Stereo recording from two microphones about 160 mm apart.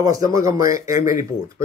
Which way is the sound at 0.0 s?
20° right (ahead or behind).